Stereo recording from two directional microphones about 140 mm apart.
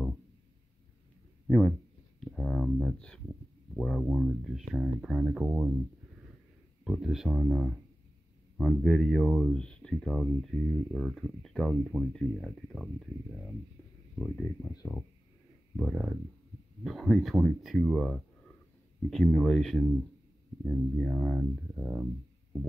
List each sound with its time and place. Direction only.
2.1 s speech: 5° left (ahead or behind)
6.8 s speech: 5° right (ahead or behind)
14.1 s speech: 15° left (ahead or behind)
15.7 s speech: 5° right (ahead or behind)